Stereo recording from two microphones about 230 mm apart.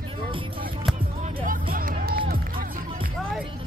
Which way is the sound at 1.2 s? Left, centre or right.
Right.